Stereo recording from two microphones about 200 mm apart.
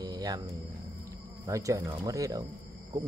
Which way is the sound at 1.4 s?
15° right (ahead or behind).